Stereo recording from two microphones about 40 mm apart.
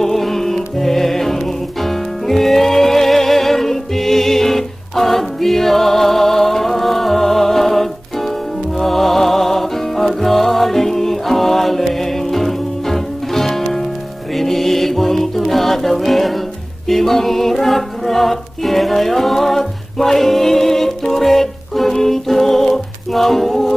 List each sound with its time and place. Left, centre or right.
0.0 s music: centre